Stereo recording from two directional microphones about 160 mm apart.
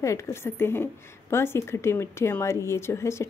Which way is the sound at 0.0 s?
20° left (ahead or behind).